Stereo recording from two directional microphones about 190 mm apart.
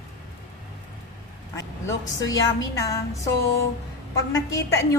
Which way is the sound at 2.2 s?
20° left (ahead or behind).